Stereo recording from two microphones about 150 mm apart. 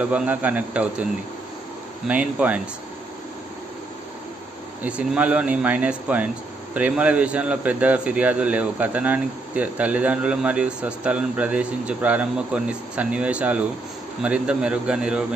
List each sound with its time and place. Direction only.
0.0 s speech: 10° right (ahead or behind)
2.0 s speech: 10° right (ahead or behind)
4.8 s speech: 10° right (ahead or behind)